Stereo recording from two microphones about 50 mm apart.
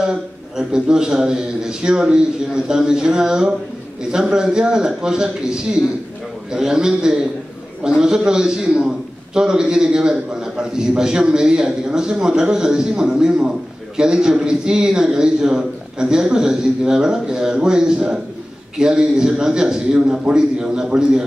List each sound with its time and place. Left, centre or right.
0.6 s a man's voice: centre